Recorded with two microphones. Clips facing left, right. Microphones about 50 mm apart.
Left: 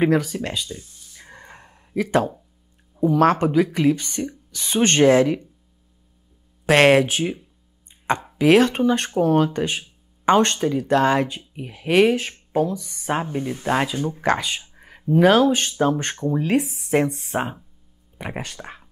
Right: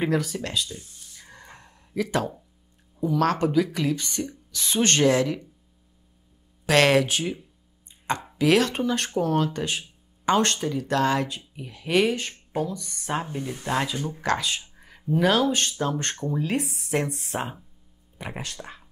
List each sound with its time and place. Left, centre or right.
0.0 s speech: centre
1.1 s gasp: left
3.0 s a woman's voice: left
6.6 s speech: left
8.4 s speech: left
12.1 s speech: centre
13.1 s speech: left
14.6 s a sound: left
15.0 s speech: centre
16.5 s speech: centre
18.1 s speech: centre